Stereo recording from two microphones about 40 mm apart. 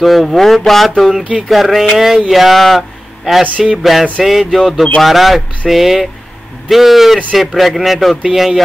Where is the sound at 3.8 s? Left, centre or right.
Centre.